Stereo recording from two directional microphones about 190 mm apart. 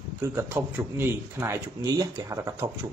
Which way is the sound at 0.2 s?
10° right (ahead or behind).